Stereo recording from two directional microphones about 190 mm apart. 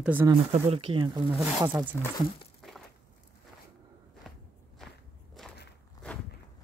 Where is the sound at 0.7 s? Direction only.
30° right (ahead or behind).